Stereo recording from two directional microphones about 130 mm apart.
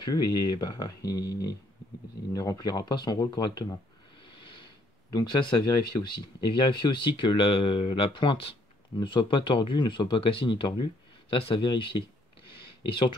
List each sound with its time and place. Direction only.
0.0 s speech: 30° left (ahead or behind)
5.1 s speech: 35° left (ahead or behind)